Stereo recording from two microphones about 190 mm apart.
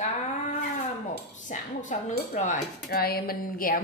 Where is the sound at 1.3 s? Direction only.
40° left (ahead or behind).